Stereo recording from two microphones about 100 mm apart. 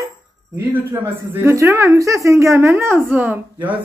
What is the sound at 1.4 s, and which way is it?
A woman's voice, 30° right (ahead or behind).